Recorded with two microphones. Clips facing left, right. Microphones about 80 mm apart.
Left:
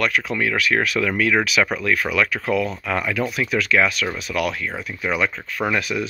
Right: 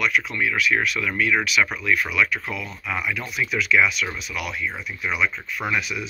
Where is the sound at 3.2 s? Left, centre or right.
Left.